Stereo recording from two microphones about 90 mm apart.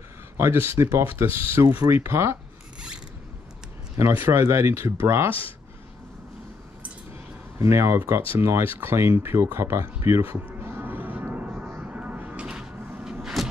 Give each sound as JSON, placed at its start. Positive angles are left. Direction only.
{"t": 0.4, "sound": "speech", "side_deg": -30}
{"t": 3.9, "sound": "speech", "side_deg": -30}
{"t": 7.5, "sound": "speech", "side_deg": -30}
{"t": 10.4, "sound": "music", "side_deg": -25}